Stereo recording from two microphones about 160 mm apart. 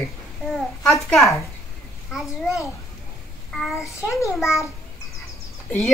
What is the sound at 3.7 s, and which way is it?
Speech, 20° left (ahead or behind).